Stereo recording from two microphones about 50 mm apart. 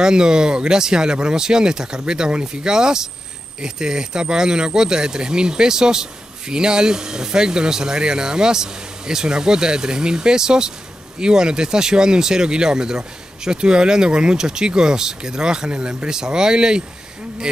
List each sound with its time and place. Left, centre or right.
0.0 s speech: centre